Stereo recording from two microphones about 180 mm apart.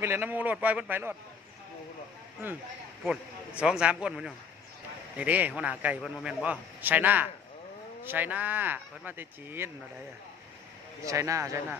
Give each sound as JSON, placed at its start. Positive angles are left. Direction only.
{"t": 0.0, "sound": "a man's voice", "side_deg": -10}
{"t": 3.0, "sound": "a man's voice", "side_deg": -5}
{"t": 11.1, "sound": "a man's voice", "side_deg": -15}